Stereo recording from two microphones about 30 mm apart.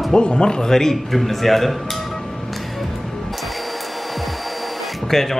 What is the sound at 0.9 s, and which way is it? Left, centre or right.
Speech, centre.